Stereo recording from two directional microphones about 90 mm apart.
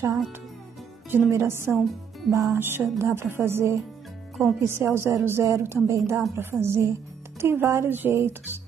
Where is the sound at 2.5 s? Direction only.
25° right (ahead or behind).